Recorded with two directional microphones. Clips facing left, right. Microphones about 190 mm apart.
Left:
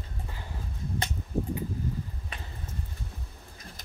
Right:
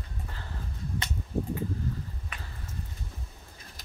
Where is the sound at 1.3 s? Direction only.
15° left (ahead or behind).